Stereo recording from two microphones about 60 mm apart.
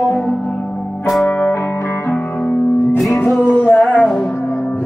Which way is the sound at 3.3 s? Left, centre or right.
Left.